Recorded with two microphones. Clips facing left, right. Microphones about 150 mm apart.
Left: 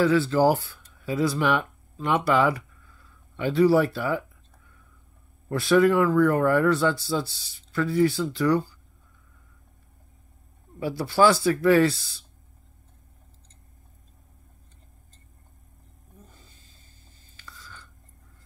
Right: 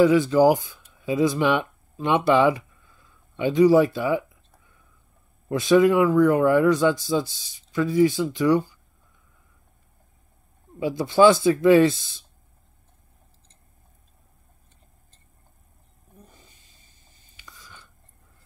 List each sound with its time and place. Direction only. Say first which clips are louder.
0.0 s speech: right 4 dB; 15° right (ahead or behind)
5.5 s speech: right 2 dB; 20° right (ahead or behind)
10.8 s speech: right 4 dB; 20° right (ahead or behind)
16.3 s a sound: even; 15° right (ahead or behind)